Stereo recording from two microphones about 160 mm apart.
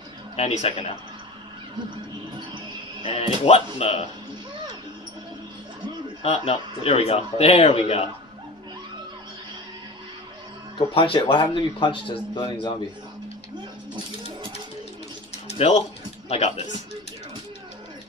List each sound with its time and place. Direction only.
0.4 s speech: 40° left (ahead or behind)
3.0 s speech: 40° left (ahead or behind)
6.2 s speech: 35° left (ahead or behind)
11.0 s speech: 30° left (ahead or behind)
15.3 s bird: 40° left (ahead or behind)
16.3 s speech: 40° left (ahead or behind)